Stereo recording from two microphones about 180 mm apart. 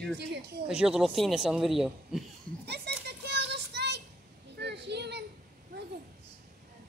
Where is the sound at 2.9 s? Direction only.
65° right (ahead or behind).